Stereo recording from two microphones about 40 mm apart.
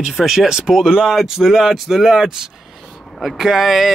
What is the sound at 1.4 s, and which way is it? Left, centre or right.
Speech, centre.